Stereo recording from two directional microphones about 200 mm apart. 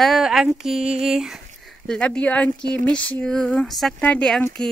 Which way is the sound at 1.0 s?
Centre (ahead or behind).